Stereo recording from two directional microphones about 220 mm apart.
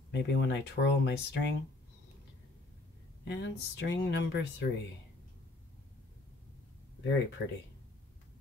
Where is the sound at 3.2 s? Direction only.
50° left (ahead or behind).